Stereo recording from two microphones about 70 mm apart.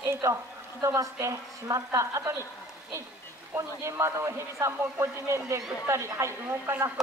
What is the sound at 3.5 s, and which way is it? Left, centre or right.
Speech, right.